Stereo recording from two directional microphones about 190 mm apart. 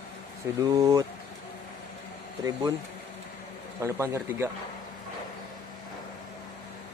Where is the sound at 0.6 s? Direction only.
20° right (ahead or behind).